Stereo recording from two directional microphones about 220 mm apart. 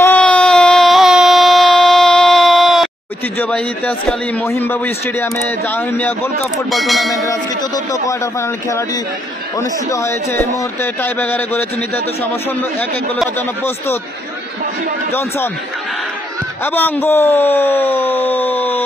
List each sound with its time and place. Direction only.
0.0 s a sound: 5° left (ahead or behind)
3.3 s a man's voice: 5° left (ahead or behind)
6.7 s bell: centre (ahead or behind)
7.2 s a man's voice: 15° left (ahead or behind)
15.1 s a man's voice: 10° left (ahead or behind)
16.6 s a man's voice: 10° left (ahead or behind)